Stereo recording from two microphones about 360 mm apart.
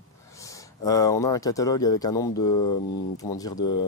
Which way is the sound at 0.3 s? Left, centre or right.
Centre.